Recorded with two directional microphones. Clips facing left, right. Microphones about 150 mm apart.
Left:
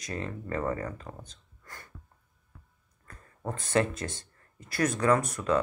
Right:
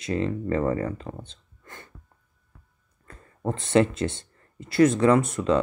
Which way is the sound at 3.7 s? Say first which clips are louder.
Right 6 dB; 25° right (ahead or behind).